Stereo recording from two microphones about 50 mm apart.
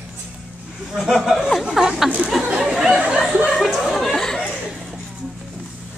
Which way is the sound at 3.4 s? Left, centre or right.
Centre.